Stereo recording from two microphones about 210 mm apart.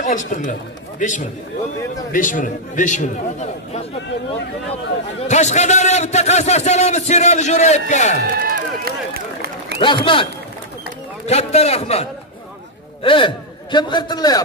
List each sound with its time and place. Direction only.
0.0 s a man's voice: 35° left (ahead or behind)
5.3 s a man's voice: 35° left (ahead or behind)
8.4 s run: 45° right (ahead or behind)
9.8 s a man's voice: 25° left (ahead or behind)
11.2 s a man's voice: 30° left (ahead or behind)